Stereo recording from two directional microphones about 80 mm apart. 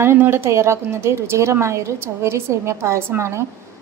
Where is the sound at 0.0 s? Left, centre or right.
Right.